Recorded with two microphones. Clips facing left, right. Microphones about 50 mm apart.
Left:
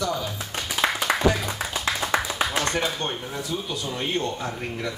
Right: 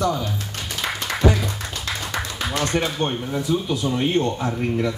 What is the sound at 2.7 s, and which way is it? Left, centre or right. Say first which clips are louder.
Speech: right 3 dB; centre.